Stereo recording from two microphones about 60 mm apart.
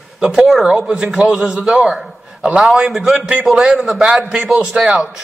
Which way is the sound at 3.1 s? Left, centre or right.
Centre.